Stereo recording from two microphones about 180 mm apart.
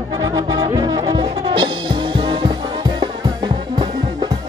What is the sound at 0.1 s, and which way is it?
Music, 25° right (ahead or behind).